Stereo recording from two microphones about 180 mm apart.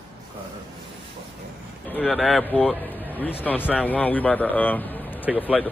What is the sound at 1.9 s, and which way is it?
A man's voice, centre (ahead or behind).